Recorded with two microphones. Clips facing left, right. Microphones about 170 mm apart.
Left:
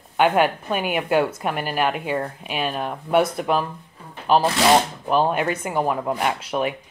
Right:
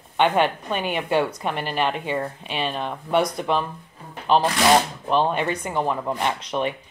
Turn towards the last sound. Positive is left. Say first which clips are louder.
# left 1 dB
turn(degrees=5)  # may be behind; listen again after turning